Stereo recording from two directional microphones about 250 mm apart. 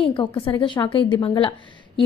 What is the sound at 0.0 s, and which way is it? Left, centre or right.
A woman's voice, centre.